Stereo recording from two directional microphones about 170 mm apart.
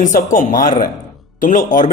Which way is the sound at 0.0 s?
50° left (ahead or behind).